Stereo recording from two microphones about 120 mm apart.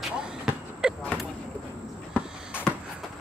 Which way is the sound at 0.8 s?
5° right (ahead or behind).